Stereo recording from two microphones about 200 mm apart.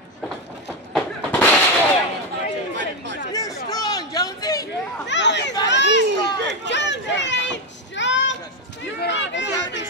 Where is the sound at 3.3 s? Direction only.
20° left (ahead or behind).